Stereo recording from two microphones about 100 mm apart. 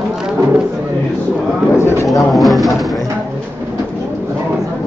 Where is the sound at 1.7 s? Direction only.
25° left (ahead or behind).